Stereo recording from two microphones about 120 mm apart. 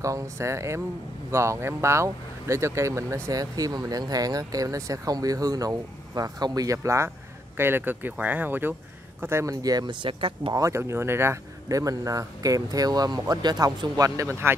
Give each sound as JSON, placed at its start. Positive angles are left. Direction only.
{"t": 0.0, "sound": "speech", "side_deg": -25}
{"t": 10.5, "sound": "speech", "side_deg": -25}